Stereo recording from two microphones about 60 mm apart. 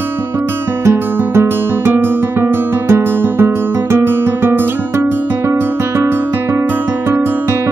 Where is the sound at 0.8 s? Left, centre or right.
Right.